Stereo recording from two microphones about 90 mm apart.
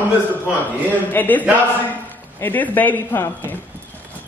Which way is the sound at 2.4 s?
20° left (ahead or behind).